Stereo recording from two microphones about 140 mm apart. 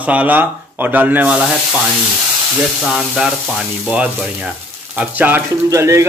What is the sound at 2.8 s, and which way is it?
Speech, 5° right (ahead or behind).